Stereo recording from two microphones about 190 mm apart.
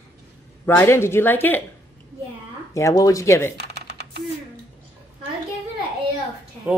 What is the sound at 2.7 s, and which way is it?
Speech, 15° left (ahead or behind).